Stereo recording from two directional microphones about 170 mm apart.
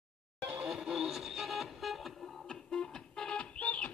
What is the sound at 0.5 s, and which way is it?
Vehicle, 5° right (ahead or behind).